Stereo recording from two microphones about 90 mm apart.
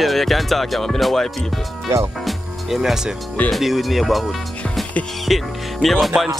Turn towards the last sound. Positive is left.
turn(degrees=0)  # may be behind; listen again after turning